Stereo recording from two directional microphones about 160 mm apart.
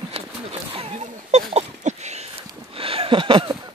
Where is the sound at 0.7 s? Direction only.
40° right (ahead or behind).